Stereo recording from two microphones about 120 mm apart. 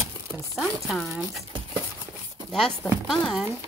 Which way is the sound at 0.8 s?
Centre (ahead or behind).